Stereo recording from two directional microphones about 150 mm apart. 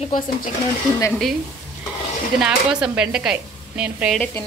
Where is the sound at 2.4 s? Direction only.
5° right (ahead or behind).